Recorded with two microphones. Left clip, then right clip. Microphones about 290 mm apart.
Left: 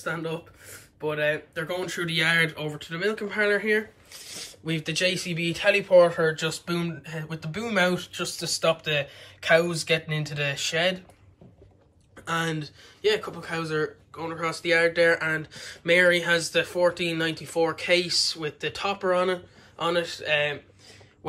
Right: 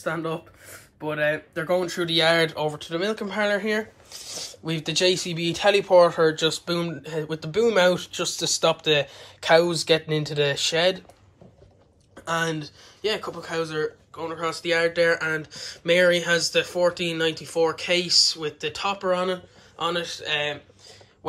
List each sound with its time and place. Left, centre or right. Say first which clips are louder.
0.0 s speech: right 3 dB; centre
12.3 s speech: right 2 dB; centre